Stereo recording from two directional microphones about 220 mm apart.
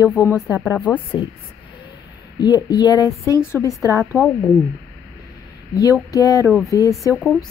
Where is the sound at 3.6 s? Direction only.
10° right (ahead or behind).